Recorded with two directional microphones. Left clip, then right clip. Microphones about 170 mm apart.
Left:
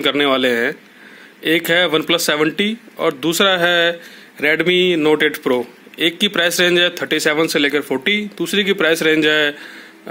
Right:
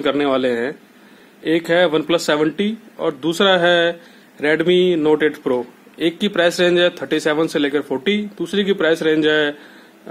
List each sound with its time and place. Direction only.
0.0 s a man's voice: 15° left (ahead or behind)